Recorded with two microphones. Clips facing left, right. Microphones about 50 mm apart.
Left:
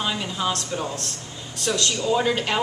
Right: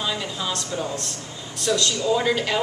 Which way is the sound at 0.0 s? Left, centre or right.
Left.